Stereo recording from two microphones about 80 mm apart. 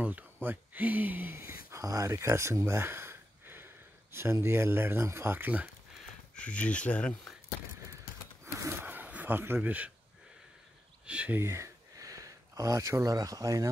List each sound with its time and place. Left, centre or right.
0.0 s speech: right
6.3 s speech: centre
8.5 s a sound: right
9.6 s speech: centre
11.1 s speech: centre
11.3 s speech: right